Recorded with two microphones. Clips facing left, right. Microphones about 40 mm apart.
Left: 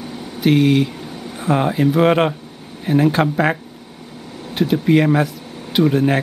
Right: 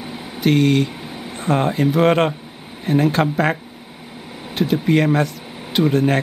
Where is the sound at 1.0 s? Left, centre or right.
Centre.